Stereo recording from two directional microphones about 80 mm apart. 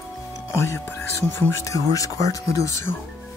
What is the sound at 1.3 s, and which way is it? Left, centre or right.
Speech, left.